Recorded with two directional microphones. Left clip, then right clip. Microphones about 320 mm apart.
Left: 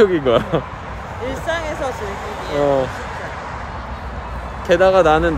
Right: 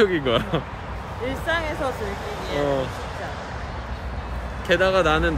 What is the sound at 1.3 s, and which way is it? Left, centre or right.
Speech, centre.